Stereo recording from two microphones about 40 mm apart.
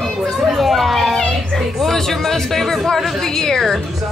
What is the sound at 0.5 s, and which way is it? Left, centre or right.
Speech, centre.